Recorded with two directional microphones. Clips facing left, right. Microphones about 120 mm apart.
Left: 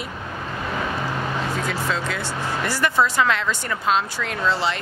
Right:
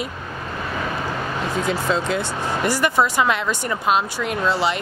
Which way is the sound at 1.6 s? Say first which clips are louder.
Right 4 dB; 25° right (ahead or behind).